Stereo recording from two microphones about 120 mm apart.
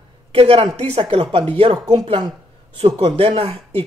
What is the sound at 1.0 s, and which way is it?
Speech, 45° right (ahead or behind).